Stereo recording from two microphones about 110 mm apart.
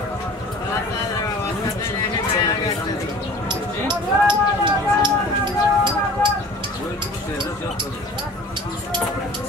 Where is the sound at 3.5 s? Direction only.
45° right (ahead or behind).